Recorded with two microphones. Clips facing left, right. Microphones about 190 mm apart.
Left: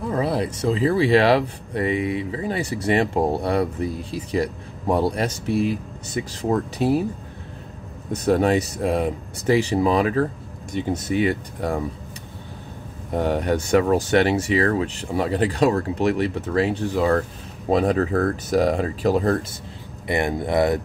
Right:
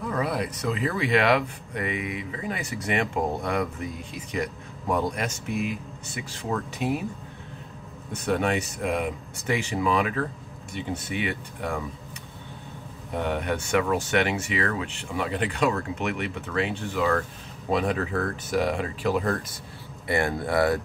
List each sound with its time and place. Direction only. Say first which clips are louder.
0.1 s speech: left 5 dB; 30° left (ahead or behind)
8.1 s speech: left 7 dB; 35° left (ahead or behind)
13.1 s speech: left 6 dB; 35° left (ahead or behind)
20.1 s speech: left 3 dB; 20° left (ahead or behind)